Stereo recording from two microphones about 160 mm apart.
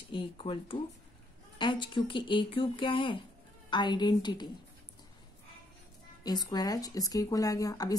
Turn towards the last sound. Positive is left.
turn(degrees=20)  # may be behind; listen again after turning